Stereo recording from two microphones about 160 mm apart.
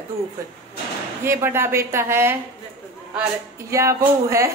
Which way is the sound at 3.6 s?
20° right (ahead or behind).